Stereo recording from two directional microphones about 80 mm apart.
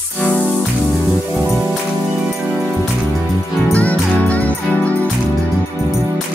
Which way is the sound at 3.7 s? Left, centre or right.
Centre.